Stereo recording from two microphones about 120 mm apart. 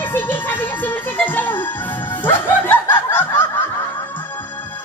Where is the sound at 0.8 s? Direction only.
15° left (ahead or behind).